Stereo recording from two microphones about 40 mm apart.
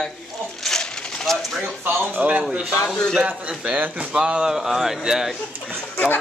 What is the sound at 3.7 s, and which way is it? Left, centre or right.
Speech, right.